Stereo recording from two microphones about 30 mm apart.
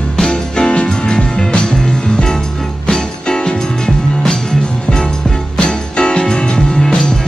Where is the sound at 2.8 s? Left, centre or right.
Left.